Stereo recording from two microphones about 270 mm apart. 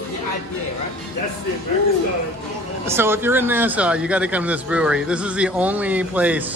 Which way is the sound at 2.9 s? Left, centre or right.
Centre.